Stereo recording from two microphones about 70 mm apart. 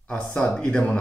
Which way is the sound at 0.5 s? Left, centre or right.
Centre.